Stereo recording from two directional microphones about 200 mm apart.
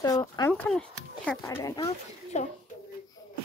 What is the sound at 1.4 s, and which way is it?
Speech, 15° left (ahead or behind).